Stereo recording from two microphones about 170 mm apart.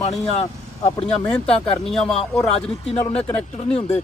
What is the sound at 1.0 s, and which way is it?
Speech, 5° left (ahead or behind).